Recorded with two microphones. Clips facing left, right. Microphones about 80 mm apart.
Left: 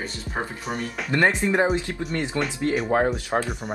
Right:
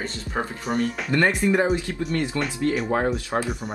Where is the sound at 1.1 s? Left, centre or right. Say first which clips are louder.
Even; left.